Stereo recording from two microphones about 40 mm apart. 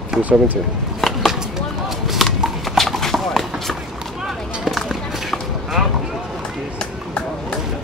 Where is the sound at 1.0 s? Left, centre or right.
Centre.